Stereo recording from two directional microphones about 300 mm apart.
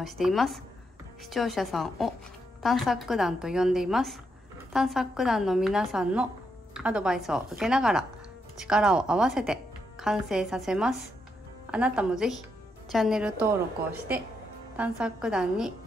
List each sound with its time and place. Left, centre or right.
0.0 s a woman's voice: centre
14.8 s a woman's voice: centre